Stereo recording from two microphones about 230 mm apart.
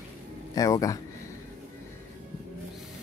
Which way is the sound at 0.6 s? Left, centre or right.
Centre.